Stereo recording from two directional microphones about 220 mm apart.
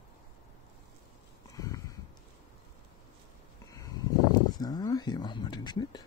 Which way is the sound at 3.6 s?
15° left (ahead or behind).